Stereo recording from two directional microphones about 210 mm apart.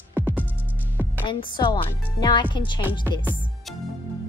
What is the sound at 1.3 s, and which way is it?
A woman's voice, 25° left (ahead or behind).